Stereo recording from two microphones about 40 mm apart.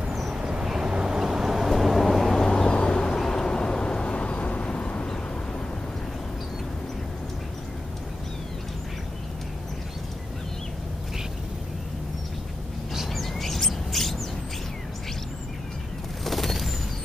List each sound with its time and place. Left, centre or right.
0.1 s vehicle: centre
0.4 s vehicle: centre
2.5 s a sound: centre
3.2 s vehicle: centre
12.9 s chirp: centre
16.3 s a sound: centre